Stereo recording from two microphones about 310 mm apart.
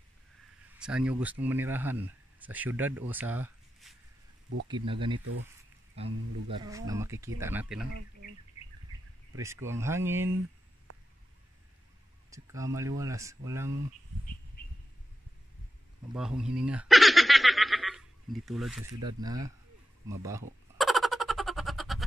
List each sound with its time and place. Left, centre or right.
0.7 s speech: centre
9.4 s speech: centre
12.3 s speech: centre
16.1 s snicker: centre
19.0 s speech: centre
20.7 s a sound: centre